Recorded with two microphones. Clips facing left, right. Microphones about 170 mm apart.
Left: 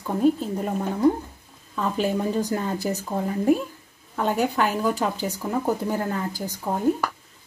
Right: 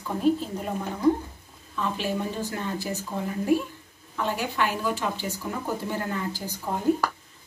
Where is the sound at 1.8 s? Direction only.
40° left (ahead or behind).